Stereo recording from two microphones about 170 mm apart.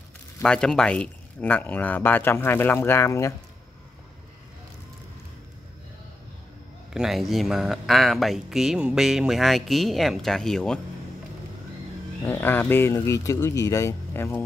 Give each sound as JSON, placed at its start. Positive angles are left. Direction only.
{"t": 0.4, "sound": "speech", "side_deg": 5}
{"t": 6.9, "sound": "speech", "side_deg": 0}
{"t": 12.3, "sound": "speech", "side_deg": 10}